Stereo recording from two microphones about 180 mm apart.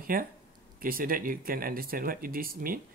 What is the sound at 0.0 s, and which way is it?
Speech, 50° right (ahead or behind).